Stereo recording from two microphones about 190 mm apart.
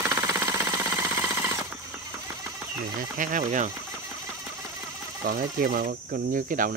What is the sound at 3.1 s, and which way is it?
Speech, 45° right (ahead or behind).